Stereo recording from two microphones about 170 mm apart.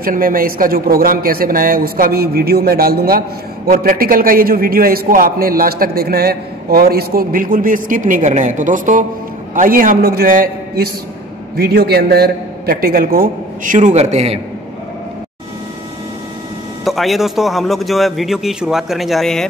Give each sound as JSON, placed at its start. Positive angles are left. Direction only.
{"t": 0.0, "sound": "a man's voice", "side_deg": -55}
{"t": 11.5, "sound": "a man's voice", "side_deg": -65}
{"t": 16.8, "sound": "a man's voice", "side_deg": 0}